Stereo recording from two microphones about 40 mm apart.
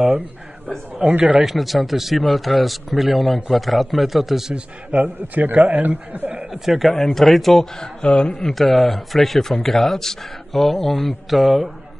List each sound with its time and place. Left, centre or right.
0.9 s speech: right
1.4 s a man's voice: centre
5.0 s a man's voice: right
6.5 s a man's voice: centre
7.8 s speech: left
8.8 s a man's voice: centre